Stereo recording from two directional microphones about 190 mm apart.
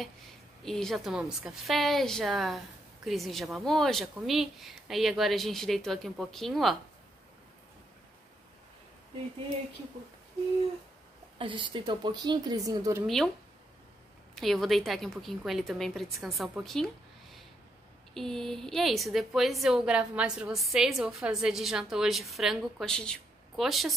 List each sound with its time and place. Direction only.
0.7 s a woman's voice: centre (ahead or behind)
11.3 s a woman's voice: 25° right (ahead or behind)
13.0 s a woman's voice: centre (ahead or behind)
14.3 s a woman's voice: centre (ahead or behind)
18.1 s a woman's voice: centre (ahead or behind)